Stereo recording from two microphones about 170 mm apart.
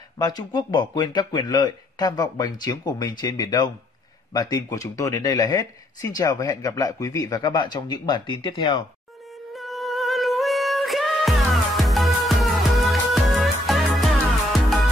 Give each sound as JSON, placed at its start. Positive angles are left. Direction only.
{"t": 0.2, "sound": "speech", "side_deg": 25}
{"t": 9.5, "sound": "music", "side_deg": 0}